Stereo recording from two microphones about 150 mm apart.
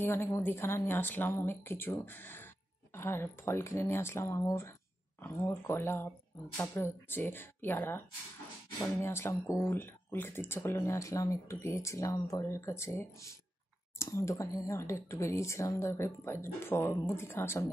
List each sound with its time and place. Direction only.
0.0 s speech: 15° left (ahead or behind)